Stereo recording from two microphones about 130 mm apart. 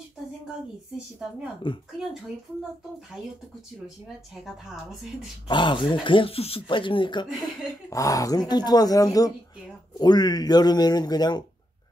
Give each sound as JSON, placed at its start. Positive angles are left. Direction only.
{"t": 1.6, "sound": "speech", "side_deg": 40}
{"t": 5.5, "sound": "speech", "side_deg": 40}
{"t": 7.9, "sound": "speech", "side_deg": 25}